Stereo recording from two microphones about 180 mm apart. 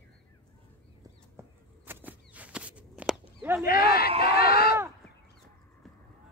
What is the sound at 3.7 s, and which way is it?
Speech, 55° left (ahead or behind).